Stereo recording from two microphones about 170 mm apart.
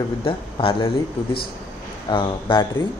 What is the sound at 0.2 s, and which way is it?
Speech, 30° left (ahead or behind).